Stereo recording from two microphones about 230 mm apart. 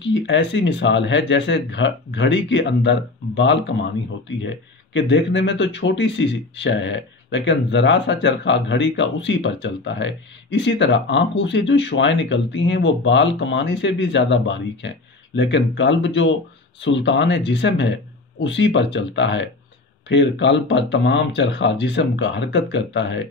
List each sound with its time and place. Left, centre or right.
0.0 s speech: left
4.9 s speech: left